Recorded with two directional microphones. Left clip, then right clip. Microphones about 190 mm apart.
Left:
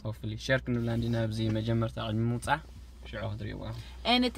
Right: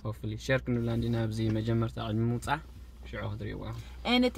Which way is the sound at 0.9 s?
10° left (ahead or behind).